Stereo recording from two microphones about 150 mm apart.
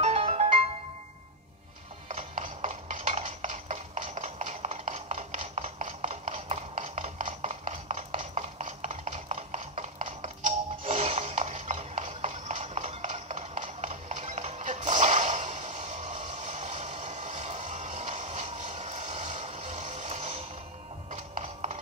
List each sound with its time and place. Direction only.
0.0 s music: 40° right (ahead or behind)
2.0 s clip-clop: 55° right (ahead or behind)
21.1 s music: 45° right (ahead or behind)